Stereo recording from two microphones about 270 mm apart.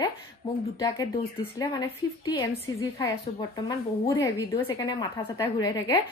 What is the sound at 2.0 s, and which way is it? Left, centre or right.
Speech, centre.